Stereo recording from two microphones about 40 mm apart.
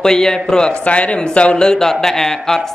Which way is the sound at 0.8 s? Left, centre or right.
Left.